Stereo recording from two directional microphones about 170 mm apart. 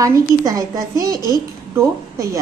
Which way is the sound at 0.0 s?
20° right (ahead or behind).